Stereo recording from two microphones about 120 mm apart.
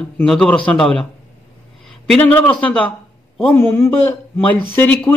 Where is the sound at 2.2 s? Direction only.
15° left (ahead or behind).